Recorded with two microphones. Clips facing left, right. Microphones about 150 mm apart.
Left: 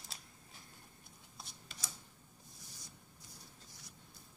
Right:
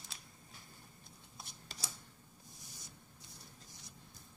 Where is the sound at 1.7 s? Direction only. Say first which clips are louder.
Right 4 dB; 35° right (ahead or behind).